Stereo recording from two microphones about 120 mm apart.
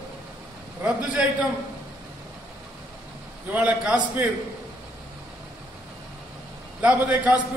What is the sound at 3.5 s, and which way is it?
Speech, 10° right (ahead or behind).